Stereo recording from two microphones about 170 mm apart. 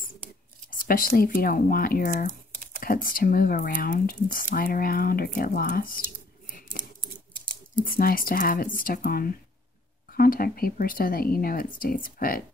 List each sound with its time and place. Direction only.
0.7 s speech: 55° left (ahead or behind)
7.7 s speech: 55° left (ahead or behind)